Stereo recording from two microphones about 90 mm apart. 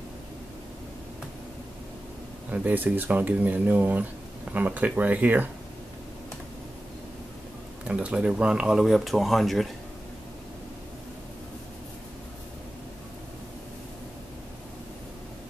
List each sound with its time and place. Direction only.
2.5 s speech: 20° right (ahead or behind)
7.8 s speech: 15° right (ahead or behind)